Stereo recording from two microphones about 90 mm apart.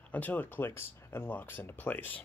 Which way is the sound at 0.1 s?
20° left (ahead or behind).